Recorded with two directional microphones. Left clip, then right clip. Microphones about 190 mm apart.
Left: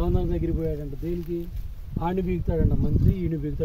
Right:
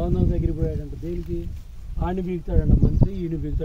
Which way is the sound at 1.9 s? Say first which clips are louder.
Left 1 dB; 30° left (ahead or behind).